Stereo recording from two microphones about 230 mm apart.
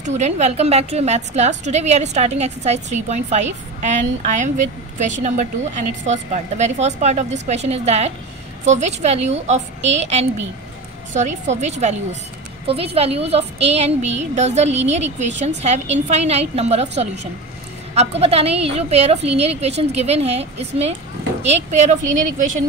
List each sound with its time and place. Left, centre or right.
0.0 s a woman's voice: right